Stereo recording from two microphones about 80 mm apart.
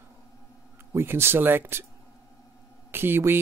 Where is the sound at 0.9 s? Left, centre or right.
Right.